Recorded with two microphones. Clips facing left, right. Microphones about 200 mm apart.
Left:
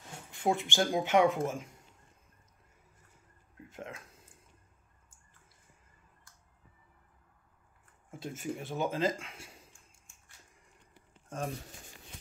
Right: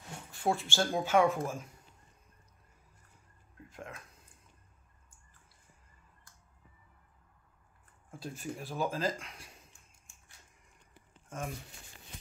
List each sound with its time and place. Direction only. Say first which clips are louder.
0.3 s speech: left 2 dB; 20° left (ahead or behind)
3.6 s a sound: left 2 dB; 25° left (ahead or behind)
8.4 s speech: left 1 dB; 20° left (ahead or behind)
11.2 s speech: left 3 dB; 30° left (ahead or behind)